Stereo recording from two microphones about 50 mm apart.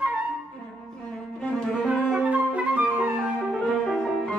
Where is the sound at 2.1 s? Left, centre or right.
Right.